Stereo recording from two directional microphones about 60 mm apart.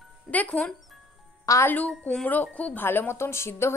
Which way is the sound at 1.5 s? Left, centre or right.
Left.